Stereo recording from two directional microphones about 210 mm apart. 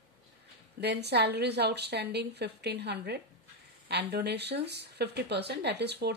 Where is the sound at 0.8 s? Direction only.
50° right (ahead or behind).